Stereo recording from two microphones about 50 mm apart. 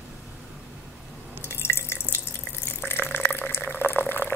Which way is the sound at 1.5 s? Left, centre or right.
Left.